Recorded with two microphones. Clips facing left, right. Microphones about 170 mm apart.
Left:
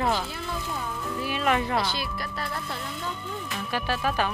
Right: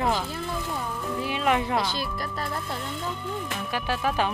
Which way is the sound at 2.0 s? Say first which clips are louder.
Right 2 dB; 40° right (ahead or behind).